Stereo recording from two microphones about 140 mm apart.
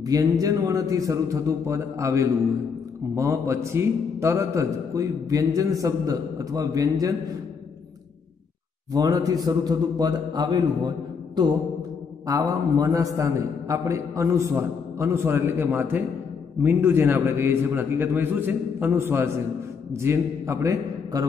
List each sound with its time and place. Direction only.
0.0 s a man's voice: 25° right (ahead or behind)
8.9 s a man's voice: 25° right (ahead or behind)
11.4 s music: 35° right (ahead or behind)
12.3 s a man's voice: 25° right (ahead or behind)